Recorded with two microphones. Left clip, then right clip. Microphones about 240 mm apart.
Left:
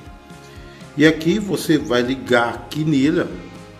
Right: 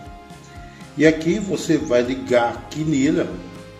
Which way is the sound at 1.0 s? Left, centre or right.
Left.